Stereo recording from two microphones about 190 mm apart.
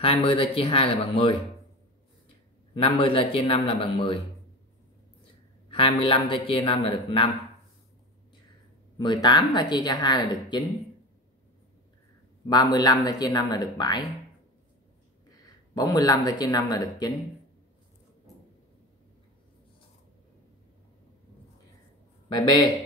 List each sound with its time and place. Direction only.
0.0 s speech: 30° left (ahead or behind)
2.7 s speech: 30° left (ahead or behind)
5.7 s speech: 30° left (ahead or behind)
8.9 s speech: 25° left (ahead or behind)
12.4 s speech: 20° left (ahead or behind)
15.4 s speech: 20° left (ahead or behind)
22.3 s speech: 25° left (ahead or behind)